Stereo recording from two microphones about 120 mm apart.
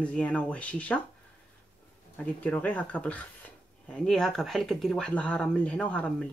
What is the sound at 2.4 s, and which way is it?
Speech, 10° left (ahead or behind).